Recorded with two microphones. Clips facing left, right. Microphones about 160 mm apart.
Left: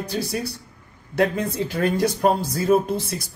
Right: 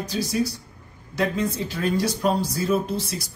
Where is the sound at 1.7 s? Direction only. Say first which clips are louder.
Left 3 dB; 50° left (ahead or behind).